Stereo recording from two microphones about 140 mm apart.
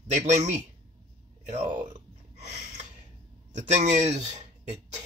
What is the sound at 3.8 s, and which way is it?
Speech, 55° right (ahead or behind).